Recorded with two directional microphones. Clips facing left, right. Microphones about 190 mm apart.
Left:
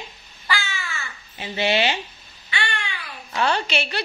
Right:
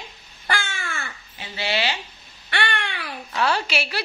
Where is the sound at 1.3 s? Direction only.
20° left (ahead or behind).